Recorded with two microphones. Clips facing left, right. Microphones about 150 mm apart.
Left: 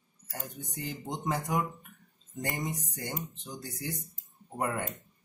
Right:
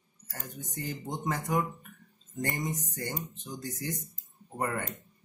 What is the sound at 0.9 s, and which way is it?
Speech, 15° left (ahead or behind).